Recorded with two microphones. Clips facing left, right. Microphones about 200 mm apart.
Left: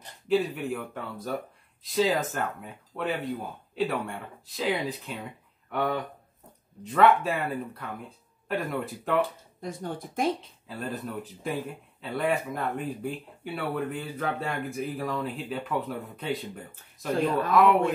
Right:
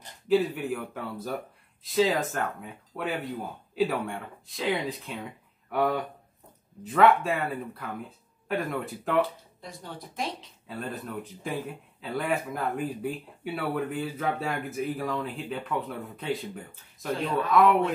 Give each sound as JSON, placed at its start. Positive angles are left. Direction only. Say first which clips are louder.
{"t": 0.3, "sound": "speech", "louder": "right 1 dB", "side_deg": 0}
{"t": 9.6, "sound": "speech", "louder": "left 8 dB", "side_deg": 50}
{"t": 10.7, "sound": "speech", "louder": "left 1 dB", "side_deg": 0}